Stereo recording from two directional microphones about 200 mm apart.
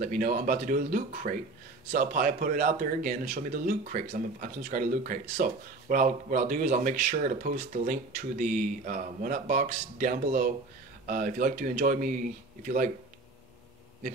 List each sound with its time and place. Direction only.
0.0 s speech: 45° right (ahead or behind)